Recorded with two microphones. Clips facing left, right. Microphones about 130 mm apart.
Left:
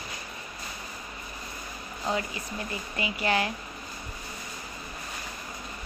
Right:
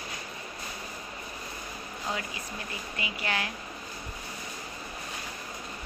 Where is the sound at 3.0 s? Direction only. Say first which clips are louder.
Left 6 dB; 40° left (ahead or behind).